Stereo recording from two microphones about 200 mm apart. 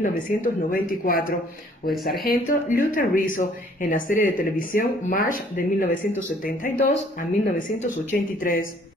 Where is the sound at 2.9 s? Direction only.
45° left (ahead or behind).